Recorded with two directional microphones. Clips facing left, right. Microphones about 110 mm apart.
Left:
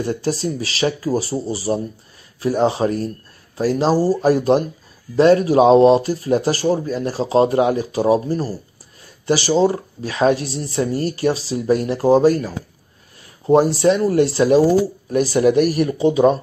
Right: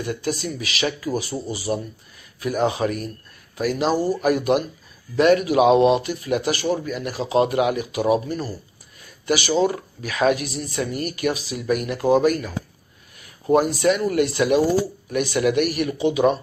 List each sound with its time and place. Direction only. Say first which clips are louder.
0.0 s speech: left 5 dB; 30° left (ahead or behind)